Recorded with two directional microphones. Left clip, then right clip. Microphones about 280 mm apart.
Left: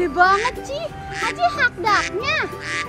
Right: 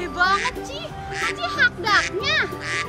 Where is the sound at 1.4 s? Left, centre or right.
Centre.